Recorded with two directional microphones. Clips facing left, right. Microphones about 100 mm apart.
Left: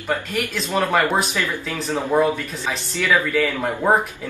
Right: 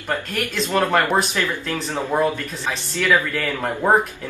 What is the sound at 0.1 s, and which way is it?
Speech, 15° left (ahead or behind).